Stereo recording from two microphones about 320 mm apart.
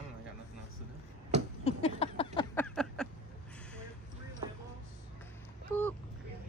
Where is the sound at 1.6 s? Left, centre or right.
Centre.